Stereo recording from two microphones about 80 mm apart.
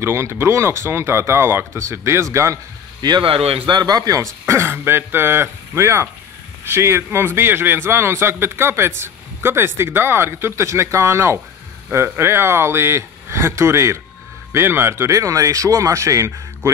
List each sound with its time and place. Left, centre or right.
0.0 s a man's voice: right
3.0 s a man's voice: right